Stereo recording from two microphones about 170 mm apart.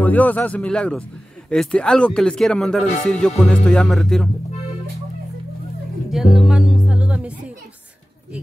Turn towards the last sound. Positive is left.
turn(degrees=-5)  # may be behind; listen again after turning